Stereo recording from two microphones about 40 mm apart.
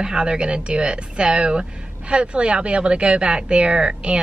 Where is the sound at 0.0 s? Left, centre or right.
Right.